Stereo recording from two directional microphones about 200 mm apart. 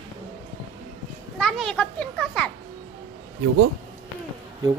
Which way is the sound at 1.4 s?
Centre (ahead or behind).